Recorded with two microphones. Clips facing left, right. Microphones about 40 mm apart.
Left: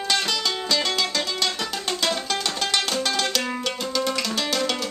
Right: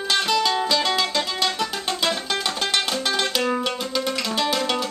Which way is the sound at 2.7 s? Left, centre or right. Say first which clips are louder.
Even; centre.